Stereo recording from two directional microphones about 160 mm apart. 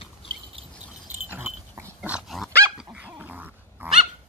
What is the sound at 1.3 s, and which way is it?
Dog, 10° right (ahead or behind).